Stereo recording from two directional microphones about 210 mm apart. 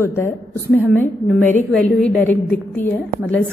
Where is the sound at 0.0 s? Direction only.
10° left (ahead or behind).